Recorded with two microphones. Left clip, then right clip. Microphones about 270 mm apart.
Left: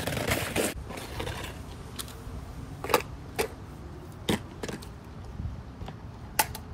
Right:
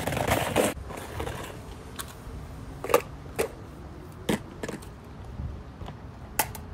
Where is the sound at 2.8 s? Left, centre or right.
Centre.